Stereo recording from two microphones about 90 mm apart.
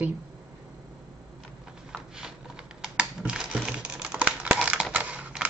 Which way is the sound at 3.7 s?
10° right (ahead or behind).